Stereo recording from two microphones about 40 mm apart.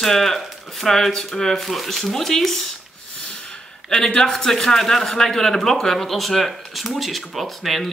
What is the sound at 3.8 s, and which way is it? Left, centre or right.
Speech, centre.